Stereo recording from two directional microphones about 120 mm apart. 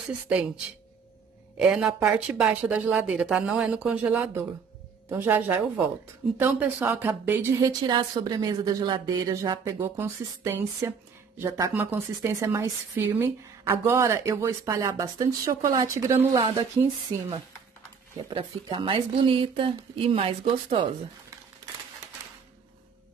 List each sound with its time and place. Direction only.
1.6 s speech: 5° right (ahead or behind)
7.6 s a woman's voice: 35° right (ahead or behind)
16.3 s a woman's voice: 45° right (ahead or behind)
18.3 s a woman's voice: 45° right (ahead or behind)